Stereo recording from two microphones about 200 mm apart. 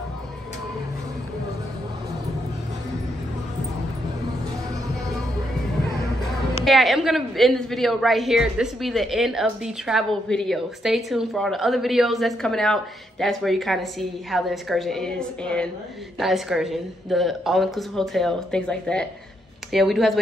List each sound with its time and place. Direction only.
6.6 s a woman's voice: centre (ahead or behind)